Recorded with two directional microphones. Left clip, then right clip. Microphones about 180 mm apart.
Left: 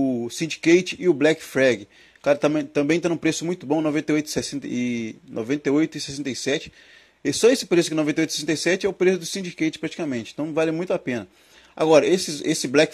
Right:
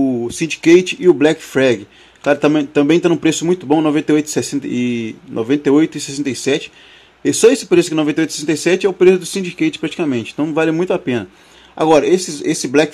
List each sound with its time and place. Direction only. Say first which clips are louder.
0.0 s speech: right 7 dB; 10° left (ahead or behind)